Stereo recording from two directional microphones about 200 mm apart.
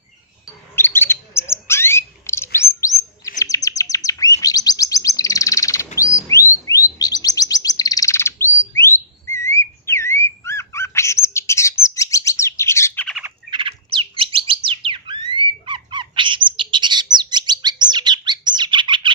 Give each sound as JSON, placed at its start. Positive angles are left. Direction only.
{"t": 0.7, "sound": "bird", "side_deg": 10}
{"t": 13.5, "sound": "bird", "side_deg": -25}